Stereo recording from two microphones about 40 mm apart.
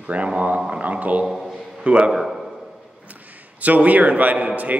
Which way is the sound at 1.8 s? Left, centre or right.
Right.